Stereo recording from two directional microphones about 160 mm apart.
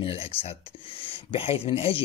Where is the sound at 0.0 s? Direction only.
35° left (ahead or behind).